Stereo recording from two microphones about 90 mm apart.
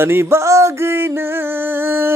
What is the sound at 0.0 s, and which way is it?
Music, 25° right (ahead or behind).